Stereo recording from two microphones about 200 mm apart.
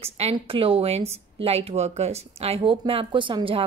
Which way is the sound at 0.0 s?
30° right (ahead or behind).